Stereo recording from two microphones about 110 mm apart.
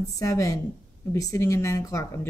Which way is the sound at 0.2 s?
30° left (ahead or behind).